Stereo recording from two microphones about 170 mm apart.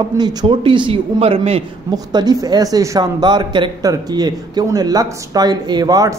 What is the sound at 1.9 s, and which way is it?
A woman's voice, 25° right (ahead or behind).